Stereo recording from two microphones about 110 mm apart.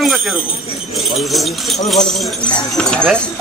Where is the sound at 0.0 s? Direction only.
Centre (ahead or behind).